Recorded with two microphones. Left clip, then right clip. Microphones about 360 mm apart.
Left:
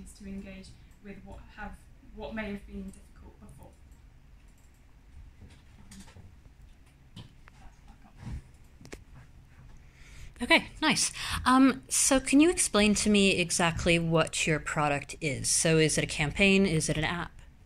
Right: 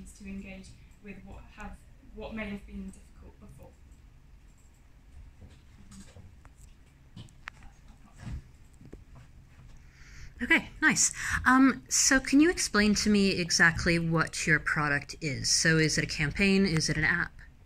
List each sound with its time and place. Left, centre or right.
7.5 s pig: right
10.0 s a woman's voice: centre